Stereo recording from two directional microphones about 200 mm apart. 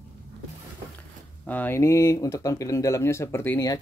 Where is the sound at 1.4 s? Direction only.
10° left (ahead or behind).